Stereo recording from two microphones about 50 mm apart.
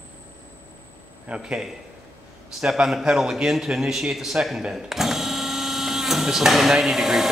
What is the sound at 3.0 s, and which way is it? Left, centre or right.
A man's voice, centre.